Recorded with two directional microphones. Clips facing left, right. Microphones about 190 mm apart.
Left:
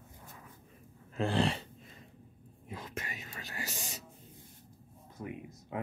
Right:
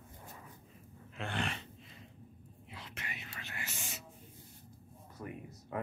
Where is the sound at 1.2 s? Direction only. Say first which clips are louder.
Left 8 dB; 35° left (ahead or behind).